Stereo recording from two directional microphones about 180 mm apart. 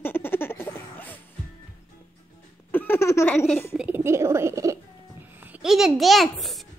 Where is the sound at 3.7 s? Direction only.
10° right (ahead or behind).